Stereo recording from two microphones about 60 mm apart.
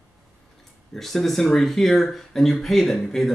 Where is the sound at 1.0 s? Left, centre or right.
Centre.